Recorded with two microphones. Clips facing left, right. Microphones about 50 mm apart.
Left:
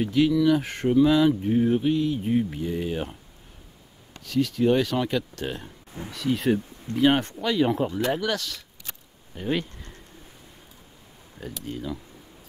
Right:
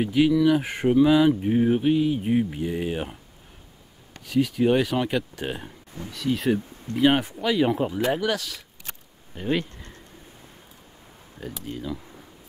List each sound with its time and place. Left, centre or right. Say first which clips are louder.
0.0 s speech: right 1 dB; centre
4.2 s speech: right 1 dB; centre
6.1 s speech: even; centre
11.3 s speech: even; centre